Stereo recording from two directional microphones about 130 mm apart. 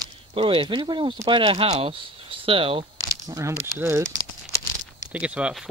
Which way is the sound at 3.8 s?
20° right (ahead or behind).